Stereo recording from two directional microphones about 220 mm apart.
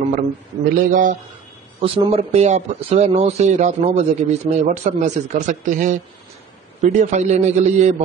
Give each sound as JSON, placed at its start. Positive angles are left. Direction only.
{"t": 0.7, "sound": "a man's voice", "side_deg": -35}
{"t": 1.8, "sound": "a man's voice", "side_deg": -25}